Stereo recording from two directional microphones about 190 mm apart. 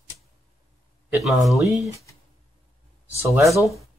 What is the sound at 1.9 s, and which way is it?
Speech, 15° left (ahead or behind).